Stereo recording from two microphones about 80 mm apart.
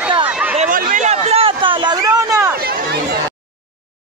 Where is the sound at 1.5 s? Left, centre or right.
Right.